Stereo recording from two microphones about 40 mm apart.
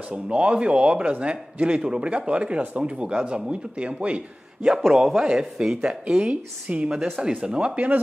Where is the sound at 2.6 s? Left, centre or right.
Right.